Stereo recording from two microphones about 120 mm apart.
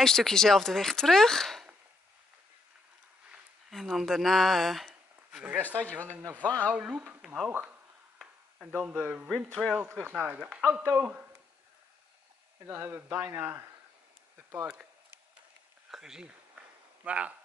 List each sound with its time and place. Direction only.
0.0 s speech: 5° left (ahead or behind)
3.3 s a sound: 5° right (ahead or behind)
5.4 s speech: 15° right (ahead or behind)
6.4 s speech: 10° left (ahead or behind)
6.7 s speech: 10° right (ahead or behind)
9.6 s speech: 5° left (ahead or behind)
10.0 s a man's voice: 15° right (ahead or behind)
12.6 s speech: 15° right (ahead or behind)
14.3 s a sound: 15° right (ahead or behind)
15.9 s a man's voice: 5° right (ahead or behind)